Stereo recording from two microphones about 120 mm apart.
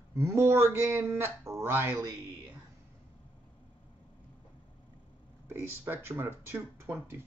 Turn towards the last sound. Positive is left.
turn(degrees=-20)  # may be behind; listen again after turning